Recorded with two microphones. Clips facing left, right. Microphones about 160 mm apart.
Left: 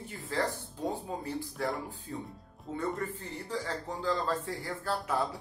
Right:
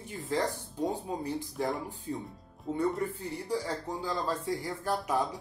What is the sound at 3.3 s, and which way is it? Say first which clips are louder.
Speech: right 3 dB; 10° right (ahead or behind).